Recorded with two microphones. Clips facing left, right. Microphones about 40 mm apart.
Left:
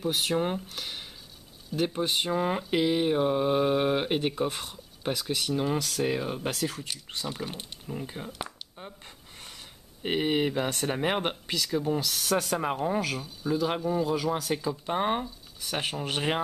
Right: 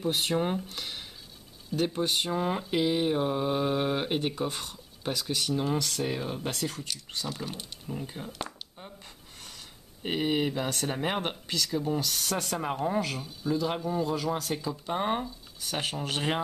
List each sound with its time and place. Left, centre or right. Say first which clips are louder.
0.2 s speech: left 1 dB; centre
10.0 s speech: left 2 dB; centre
13.5 s speech: left 2 dB; centre